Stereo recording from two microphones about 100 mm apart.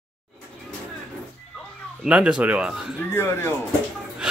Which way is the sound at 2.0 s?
10° right (ahead or behind).